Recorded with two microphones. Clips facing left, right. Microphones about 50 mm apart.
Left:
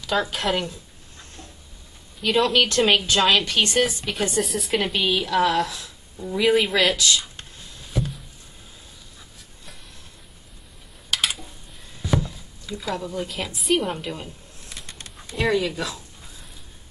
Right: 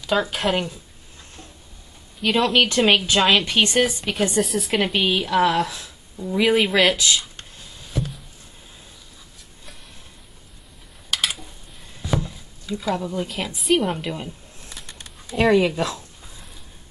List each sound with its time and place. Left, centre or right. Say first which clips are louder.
0.4 s a woman's voice: right 2 dB; centre
2.2 s a woman's voice: right 1 dB; centre
3.1 s a woman's voice: right 1 dB; centre
3.7 s a woman's voice: right 2 dB; centre
5.0 s speech: right 1 dB; centre
6.4 s a woman's voice: right 1 dB; centre
7.9 s a sound: even; centre
11.1 s a sound: even; centre
12.3 s chopping: right 4 dB; centre
13.0 s a woman's voice: right 2 dB; centre
14.8 s bird: left 2 dB; centre
15.5 s speech: right 5 dB; right